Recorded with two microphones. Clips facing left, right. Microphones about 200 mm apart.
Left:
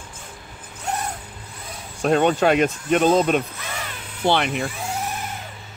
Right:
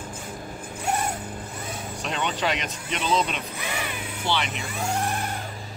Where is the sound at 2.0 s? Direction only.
50° left (ahead or behind).